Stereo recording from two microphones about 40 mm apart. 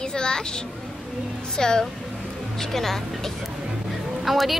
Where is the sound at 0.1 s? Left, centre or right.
Centre.